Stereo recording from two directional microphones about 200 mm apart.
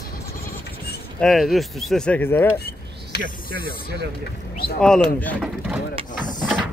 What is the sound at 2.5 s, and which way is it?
Vehicle, 50° left (ahead or behind).